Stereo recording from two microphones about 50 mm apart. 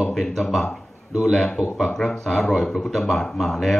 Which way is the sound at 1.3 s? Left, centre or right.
Centre.